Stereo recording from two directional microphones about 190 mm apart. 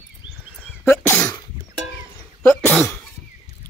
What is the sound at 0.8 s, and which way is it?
Cough, 10° left (ahead or behind).